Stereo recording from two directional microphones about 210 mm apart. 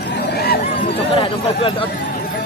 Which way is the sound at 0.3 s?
50° left (ahead or behind).